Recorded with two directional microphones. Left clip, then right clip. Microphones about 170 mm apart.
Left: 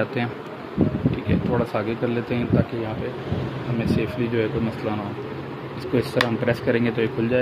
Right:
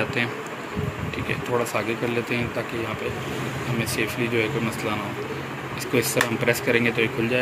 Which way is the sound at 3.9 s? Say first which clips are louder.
Right 1 dB; 50° left (ahead or behind).